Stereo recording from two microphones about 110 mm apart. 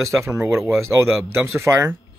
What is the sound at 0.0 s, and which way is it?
Speech, 30° right (ahead or behind).